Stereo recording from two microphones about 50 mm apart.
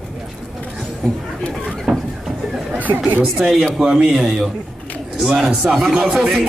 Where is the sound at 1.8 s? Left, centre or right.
Centre.